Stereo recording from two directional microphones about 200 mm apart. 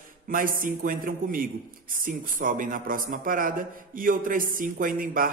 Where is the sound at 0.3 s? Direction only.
45° right (ahead or behind).